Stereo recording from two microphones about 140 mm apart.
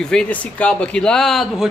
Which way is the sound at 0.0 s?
5° left (ahead or behind).